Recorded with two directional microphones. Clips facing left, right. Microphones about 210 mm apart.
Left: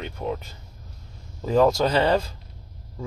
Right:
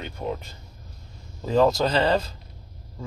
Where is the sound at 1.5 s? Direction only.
5° left (ahead or behind).